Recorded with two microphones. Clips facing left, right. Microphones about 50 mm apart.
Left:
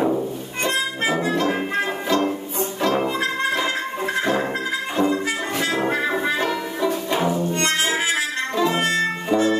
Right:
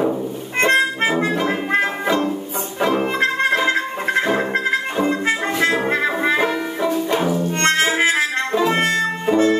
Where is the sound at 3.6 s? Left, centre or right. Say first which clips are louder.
Right 4 dB; right.